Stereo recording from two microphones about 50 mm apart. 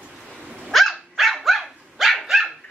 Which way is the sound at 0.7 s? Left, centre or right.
Centre.